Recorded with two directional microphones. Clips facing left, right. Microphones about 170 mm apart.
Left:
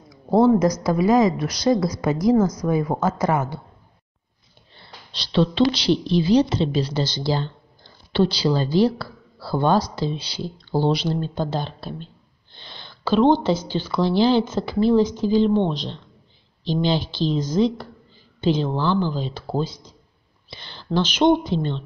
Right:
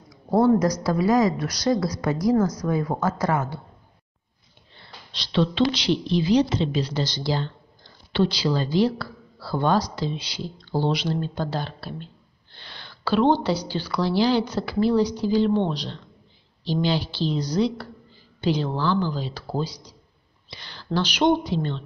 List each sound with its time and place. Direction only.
0.6 s speech: 20° left (ahead or behind)
5.1 s a woman's voice: 35° left (ahead or behind)